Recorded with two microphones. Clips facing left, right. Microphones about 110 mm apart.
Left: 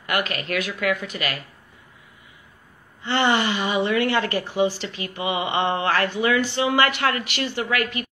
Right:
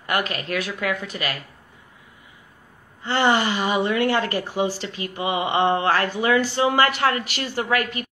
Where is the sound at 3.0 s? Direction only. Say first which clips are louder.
Right 1 dB; 40° right (ahead or behind).